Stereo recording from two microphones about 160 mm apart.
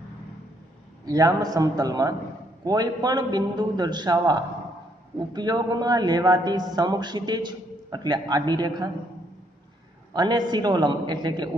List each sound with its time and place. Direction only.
1.0 s a man's voice: 25° right (ahead or behind)
10.1 s a man's voice: 25° right (ahead or behind)